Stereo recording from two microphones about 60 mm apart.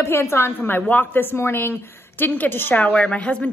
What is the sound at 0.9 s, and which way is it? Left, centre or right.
A woman's voice, left.